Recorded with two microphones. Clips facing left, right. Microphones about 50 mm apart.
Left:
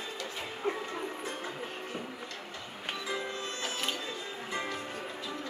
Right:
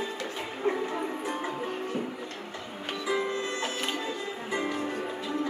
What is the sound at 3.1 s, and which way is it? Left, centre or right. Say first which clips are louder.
Music: right 9 dB; right.